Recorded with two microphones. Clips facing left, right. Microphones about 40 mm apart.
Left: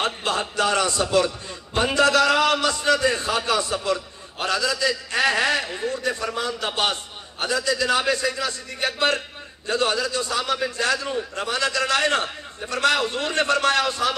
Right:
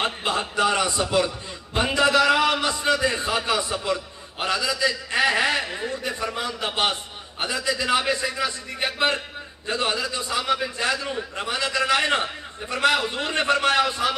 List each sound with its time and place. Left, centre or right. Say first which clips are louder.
0.0 s a man's voice: left 1 dB; centre